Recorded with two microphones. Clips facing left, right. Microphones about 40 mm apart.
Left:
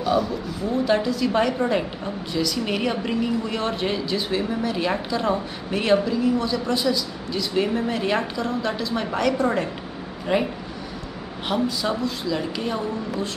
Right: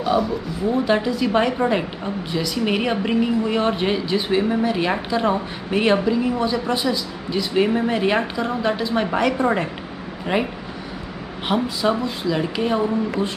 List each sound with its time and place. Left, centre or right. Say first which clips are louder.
0.0 s a man's voice: right 2 dB; centre